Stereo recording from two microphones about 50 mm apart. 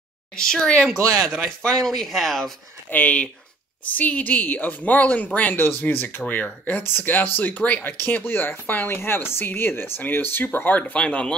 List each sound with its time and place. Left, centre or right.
0.4 s speech: centre
0.9 s speech: right
1.6 s speech: centre
2.9 s speech: left
6.8 s speech: left
7.8 s speech: left
10.8 s speech: left